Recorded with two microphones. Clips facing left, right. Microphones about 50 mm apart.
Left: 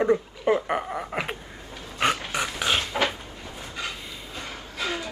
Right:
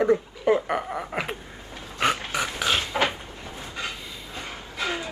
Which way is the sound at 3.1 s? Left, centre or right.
Centre.